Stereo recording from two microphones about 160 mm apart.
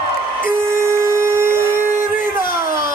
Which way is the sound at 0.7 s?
15° right (ahead or behind).